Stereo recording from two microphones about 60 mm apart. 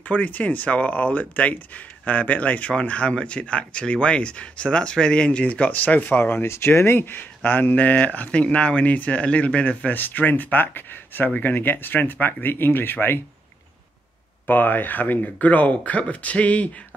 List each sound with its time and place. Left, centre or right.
0.0 s speech: left
14.4 s speech: left